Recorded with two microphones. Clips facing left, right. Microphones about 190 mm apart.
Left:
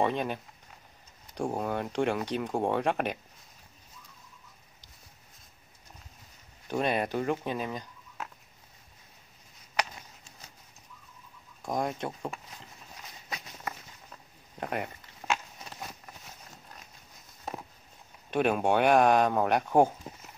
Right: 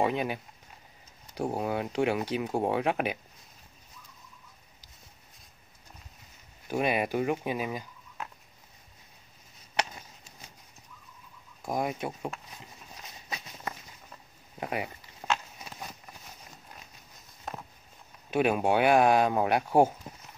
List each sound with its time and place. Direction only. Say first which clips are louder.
0.0 s speech: even; 5° right (ahead or behind)
6.7 s speech: right 1 dB; 10° right (ahead or behind)
11.6 s speech: even; 5° right (ahead or behind)
14.6 s speech: even; 5° right (ahead or behind)
18.3 s speech: right 1 dB; 5° right (ahead or behind)